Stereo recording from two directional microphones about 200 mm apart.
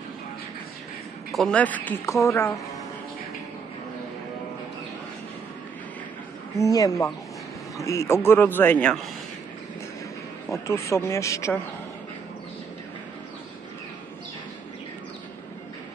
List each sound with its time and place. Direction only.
1.3 s speech: 5° left (ahead or behind)
6.6 s speech: 15° left (ahead or behind)
10.5 s speech: 15° left (ahead or behind)